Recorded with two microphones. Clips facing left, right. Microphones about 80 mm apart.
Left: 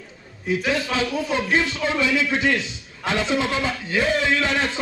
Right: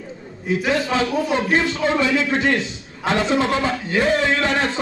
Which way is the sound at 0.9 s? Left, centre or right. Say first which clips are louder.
Right 3 dB; right.